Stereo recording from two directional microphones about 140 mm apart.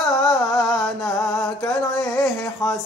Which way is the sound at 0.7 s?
15° left (ahead or behind).